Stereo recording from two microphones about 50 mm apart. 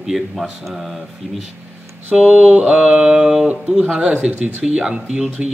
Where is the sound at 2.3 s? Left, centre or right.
Right.